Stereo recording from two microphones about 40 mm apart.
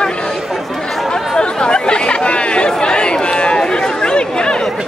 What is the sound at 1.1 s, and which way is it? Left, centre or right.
Chatter, left.